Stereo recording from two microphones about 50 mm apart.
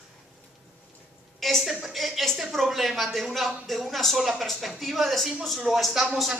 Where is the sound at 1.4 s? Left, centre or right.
Centre.